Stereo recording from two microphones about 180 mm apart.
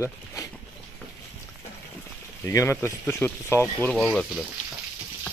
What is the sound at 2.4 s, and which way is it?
Speech, 15° left (ahead or behind).